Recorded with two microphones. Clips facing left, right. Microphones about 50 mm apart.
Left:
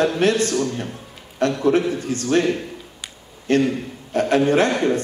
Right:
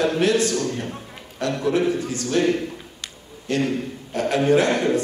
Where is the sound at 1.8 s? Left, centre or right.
Right.